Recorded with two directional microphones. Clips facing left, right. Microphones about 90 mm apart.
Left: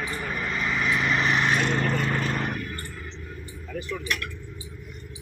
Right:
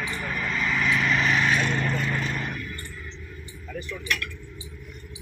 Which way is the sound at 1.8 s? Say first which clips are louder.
Left 2 dB; 50° left (ahead or behind).